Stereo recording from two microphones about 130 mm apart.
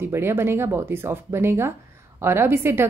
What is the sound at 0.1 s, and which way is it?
A woman's voice, 20° right (ahead or behind).